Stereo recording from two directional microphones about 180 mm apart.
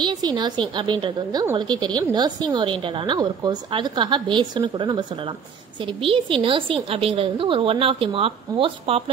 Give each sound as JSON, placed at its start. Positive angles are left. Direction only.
{"t": 0.0, "sound": "a woman's voice", "side_deg": -25}